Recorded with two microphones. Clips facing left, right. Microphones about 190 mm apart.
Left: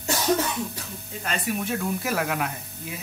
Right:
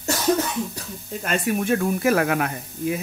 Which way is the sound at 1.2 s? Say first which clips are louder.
Right 5 dB; 50° right (ahead or behind).